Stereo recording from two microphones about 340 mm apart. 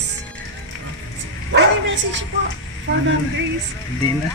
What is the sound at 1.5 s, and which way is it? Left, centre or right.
Bow-wow, right.